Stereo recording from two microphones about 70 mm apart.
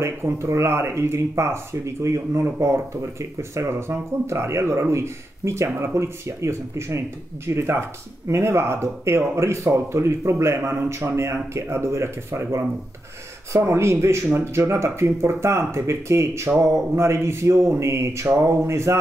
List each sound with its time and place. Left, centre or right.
0.0 s speech: right